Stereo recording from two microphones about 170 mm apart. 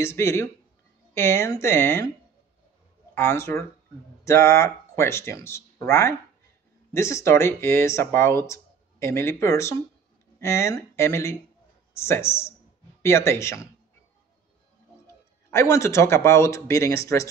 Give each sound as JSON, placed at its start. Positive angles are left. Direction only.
{"t": 0.0, "sound": "speech", "side_deg": 15}
{"t": 3.2, "sound": "speech", "side_deg": 15}
{"t": 15.5, "sound": "speech", "side_deg": 15}